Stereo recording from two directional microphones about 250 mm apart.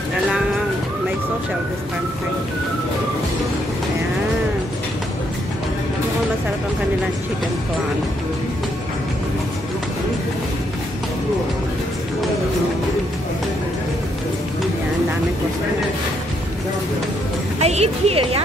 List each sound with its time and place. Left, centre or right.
17.6 s speech: right